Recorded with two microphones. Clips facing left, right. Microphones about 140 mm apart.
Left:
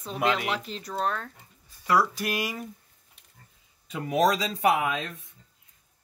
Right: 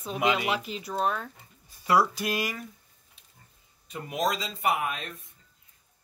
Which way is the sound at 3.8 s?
90° left.